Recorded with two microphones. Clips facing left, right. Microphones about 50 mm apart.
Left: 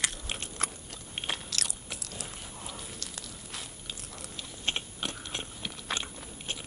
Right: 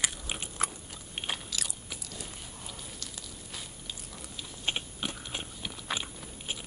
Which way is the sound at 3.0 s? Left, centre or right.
Centre.